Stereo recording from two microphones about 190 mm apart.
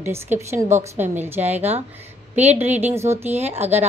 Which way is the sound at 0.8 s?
10° right (ahead or behind).